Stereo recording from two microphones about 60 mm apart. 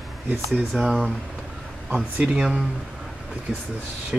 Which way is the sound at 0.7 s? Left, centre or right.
Centre.